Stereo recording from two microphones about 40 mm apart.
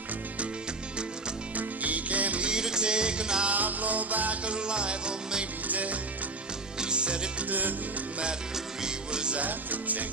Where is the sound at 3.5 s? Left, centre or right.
Right.